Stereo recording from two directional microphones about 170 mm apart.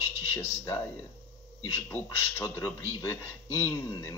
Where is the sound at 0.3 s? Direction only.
15° left (ahead or behind).